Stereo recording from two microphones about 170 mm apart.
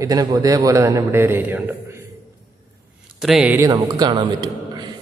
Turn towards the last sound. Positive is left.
turn(degrees=-25)  # may be behind; listen again after turning